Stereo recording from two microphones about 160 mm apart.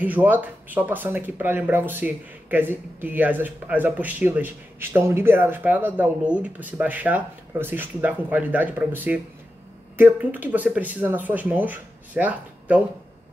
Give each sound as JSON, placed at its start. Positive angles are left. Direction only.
{"t": 0.0, "sound": "speech", "side_deg": -10}